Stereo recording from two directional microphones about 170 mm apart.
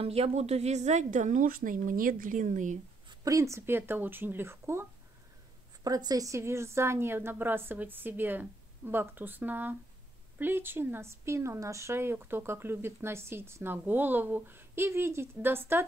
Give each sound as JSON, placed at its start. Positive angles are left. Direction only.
{"t": 0.0, "sound": "speech", "side_deg": -35}
{"t": 3.1, "sound": "speech", "side_deg": -20}
{"t": 5.9, "sound": "speech", "side_deg": -20}